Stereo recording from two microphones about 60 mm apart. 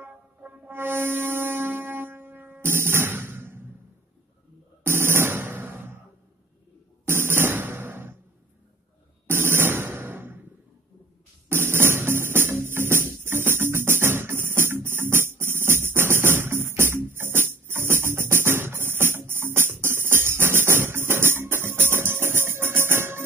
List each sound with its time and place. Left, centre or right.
0.0 s shofar: right
4.8 s music: right
7.1 s music: right
9.3 s a sound: right
11.4 s music: right